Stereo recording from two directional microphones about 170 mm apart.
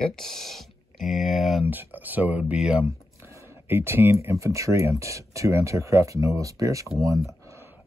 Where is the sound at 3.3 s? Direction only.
15° right (ahead or behind).